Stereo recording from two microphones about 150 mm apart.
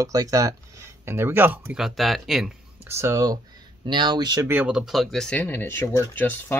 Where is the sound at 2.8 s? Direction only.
20° right (ahead or behind).